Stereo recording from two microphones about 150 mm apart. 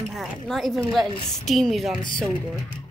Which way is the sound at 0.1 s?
Centre (ahead or behind).